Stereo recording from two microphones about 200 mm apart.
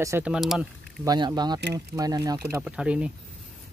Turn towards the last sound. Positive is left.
turn(degrees=-5)  # may be behind; listen again after turning